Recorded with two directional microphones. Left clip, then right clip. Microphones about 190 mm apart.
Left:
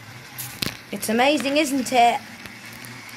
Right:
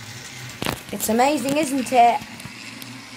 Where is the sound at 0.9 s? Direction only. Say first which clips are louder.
Even; 5° left (ahead or behind).